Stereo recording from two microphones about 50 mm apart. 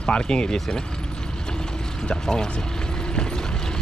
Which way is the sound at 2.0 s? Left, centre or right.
Centre.